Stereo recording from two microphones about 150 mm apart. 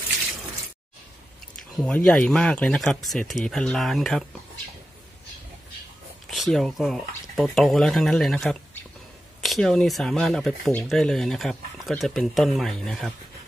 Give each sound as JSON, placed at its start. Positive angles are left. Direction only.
{"t": 1.8, "sound": "speech", "side_deg": 5}
{"t": 6.3, "sound": "speech", "side_deg": 0}